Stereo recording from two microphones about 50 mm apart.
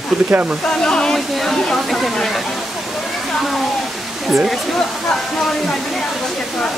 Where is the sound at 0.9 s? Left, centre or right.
Centre.